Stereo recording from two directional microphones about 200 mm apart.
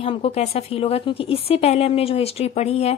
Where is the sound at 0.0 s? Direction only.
30° left (ahead or behind).